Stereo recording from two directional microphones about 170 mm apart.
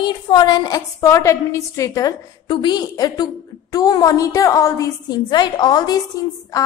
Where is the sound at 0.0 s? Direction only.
25° left (ahead or behind).